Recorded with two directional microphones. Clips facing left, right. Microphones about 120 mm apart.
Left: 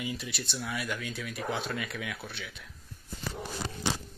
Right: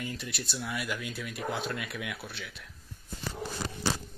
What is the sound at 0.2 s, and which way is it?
Speech, centre (ahead or behind).